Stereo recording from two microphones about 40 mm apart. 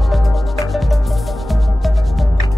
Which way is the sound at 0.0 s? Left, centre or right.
Centre.